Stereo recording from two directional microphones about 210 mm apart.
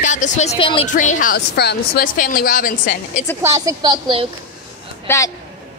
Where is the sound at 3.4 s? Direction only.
15° right (ahead or behind).